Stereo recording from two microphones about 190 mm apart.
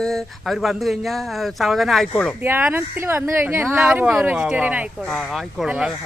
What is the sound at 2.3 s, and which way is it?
Speech, 10° right (ahead or behind).